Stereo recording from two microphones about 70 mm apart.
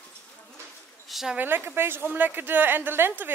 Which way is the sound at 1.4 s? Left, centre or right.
Right.